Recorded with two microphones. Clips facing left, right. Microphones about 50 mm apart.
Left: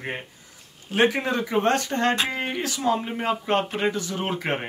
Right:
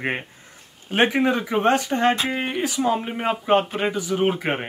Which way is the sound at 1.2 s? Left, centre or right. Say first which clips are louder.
Right 3 dB; centre.